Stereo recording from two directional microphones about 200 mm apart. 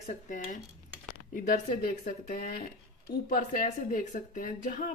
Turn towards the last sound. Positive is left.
turn(degrees=40)  # may be behind; listen again after turning